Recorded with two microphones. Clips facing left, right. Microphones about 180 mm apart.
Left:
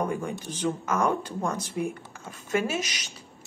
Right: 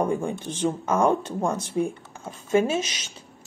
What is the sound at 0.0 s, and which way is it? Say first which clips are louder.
Speech: right 4 dB; 30° right (ahead or behind).